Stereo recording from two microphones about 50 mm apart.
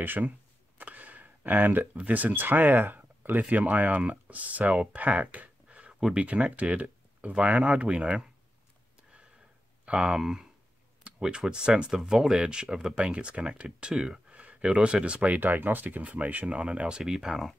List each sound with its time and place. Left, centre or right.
0.0 s speech: right
0.7 s a sound: right
2.0 s speech: right
5.9 s speech: centre
6.2 s speech: right
9.8 s speech: centre
14.4 s speech: right